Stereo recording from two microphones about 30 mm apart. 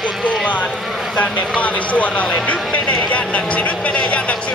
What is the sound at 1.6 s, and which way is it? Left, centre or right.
A man's voice, left.